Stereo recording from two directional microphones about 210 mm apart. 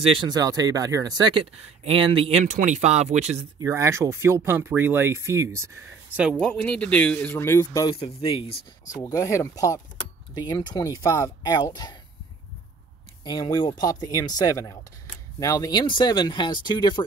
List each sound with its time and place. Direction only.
0.2 s speech: 20° right (ahead or behind)
3.3 s speech: 15° right (ahead or behind)
6.3 s speech: 5° left (ahead or behind); by 8.5 s 25° left (ahead or behind)
9.0 s speech: 15° left (ahead or behind)
13.2 s speech: 20° left (ahead or behind)